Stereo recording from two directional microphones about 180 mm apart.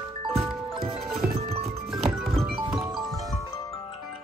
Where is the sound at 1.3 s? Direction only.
35° right (ahead or behind).